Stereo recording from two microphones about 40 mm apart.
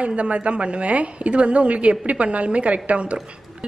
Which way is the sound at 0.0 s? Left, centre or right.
Right.